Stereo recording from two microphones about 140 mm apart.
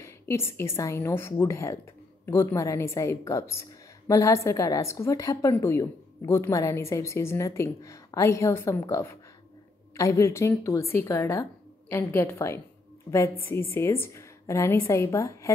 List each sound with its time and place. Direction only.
0.0 s a woman's voice: 20° left (ahead or behind)